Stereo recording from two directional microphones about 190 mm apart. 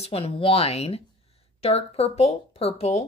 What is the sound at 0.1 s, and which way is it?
Speech, 30° left (ahead or behind).